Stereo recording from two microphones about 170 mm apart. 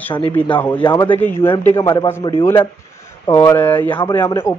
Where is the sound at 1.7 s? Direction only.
25° left (ahead or behind).